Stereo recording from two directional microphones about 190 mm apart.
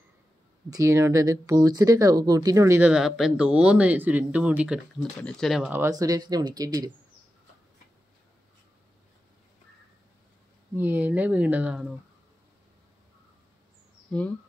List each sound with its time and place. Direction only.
0.7 s speech: 15° right (ahead or behind)
10.8 s speech: 10° right (ahead or behind)
14.1 s speech: 5° left (ahead or behind)